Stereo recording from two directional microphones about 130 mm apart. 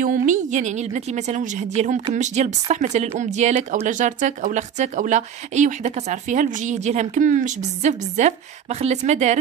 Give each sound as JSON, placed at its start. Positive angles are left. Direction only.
{"t": 0.0, "sound": "speech", "side_deg": -80}